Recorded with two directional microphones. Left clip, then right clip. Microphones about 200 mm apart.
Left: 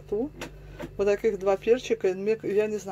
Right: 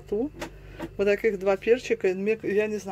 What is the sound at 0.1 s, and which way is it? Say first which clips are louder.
Speech: right 1 dB; 10° right (ahead or behind).